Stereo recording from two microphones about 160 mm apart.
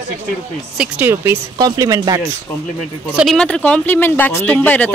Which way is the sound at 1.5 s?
25° right (ahead or behind).